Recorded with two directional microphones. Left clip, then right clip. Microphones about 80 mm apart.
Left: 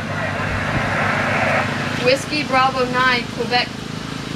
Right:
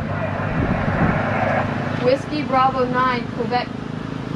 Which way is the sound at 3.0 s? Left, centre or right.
Centre.